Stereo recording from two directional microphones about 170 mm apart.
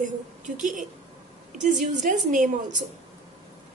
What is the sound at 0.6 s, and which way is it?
A woman's voice, 50° right (ahead or behind).